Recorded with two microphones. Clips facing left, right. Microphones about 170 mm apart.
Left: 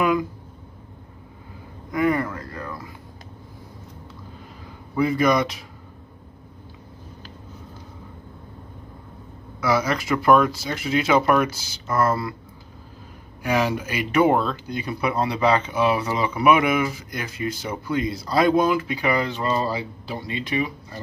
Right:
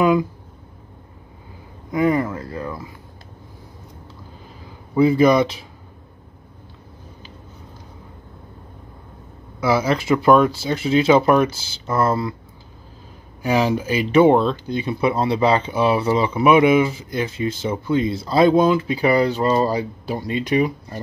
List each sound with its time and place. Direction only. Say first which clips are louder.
1.9 s a sound: right 3 dB; 25° right (ahead or behind)
4.9 s speech: right 5 dB; 30° right (ahead or behind)
9.6 s speech: right 3 dB; 30° right (ahead or behind)
13.4 s speech: right 3 dB; 30° right (ahead or behind)